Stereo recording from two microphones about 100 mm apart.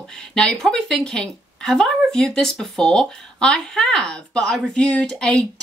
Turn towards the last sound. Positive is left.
turn(degrees=10)  # may be behind; listen again after turning